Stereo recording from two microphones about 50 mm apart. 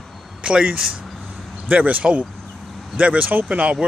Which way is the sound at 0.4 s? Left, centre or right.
Right.